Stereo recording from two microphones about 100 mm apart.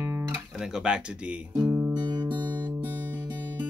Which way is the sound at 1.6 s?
20° right (ahead or behind).